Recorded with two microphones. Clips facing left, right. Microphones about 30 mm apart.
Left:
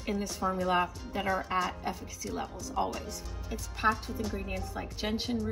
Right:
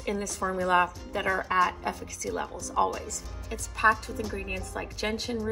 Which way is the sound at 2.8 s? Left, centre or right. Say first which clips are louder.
Right 6 dB; right.